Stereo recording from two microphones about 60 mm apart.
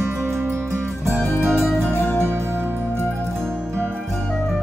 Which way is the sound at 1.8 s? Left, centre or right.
Left.